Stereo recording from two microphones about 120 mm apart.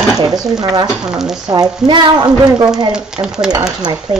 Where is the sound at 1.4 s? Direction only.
35° right (ahead or behind).